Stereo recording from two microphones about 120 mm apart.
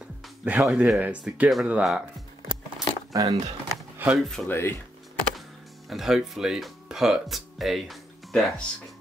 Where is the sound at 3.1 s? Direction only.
30° right (ahead or behind).